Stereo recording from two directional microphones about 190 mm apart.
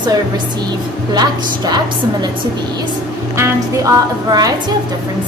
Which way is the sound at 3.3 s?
15° right (ahead or behind).